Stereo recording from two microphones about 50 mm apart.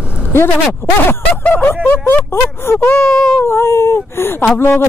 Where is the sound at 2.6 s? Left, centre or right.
Left.